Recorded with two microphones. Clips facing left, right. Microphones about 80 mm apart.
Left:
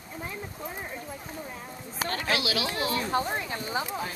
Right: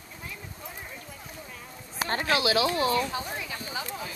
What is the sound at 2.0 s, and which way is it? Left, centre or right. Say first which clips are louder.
Speech: right 3 dB; right.